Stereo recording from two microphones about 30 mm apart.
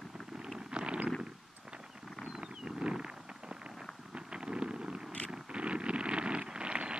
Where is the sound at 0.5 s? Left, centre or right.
Right.